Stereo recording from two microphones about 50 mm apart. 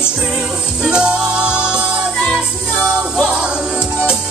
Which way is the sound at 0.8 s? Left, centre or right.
Centre.